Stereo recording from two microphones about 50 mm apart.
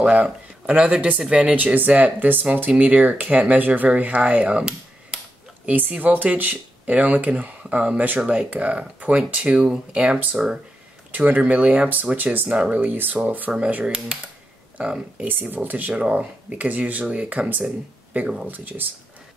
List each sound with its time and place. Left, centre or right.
0.0 s speech: right
5.7 s speech: right
11.1 s speech: right
13.8 s speech: centre
15.5 s speech: right
15.9 s speech: right
18.5 s speech: right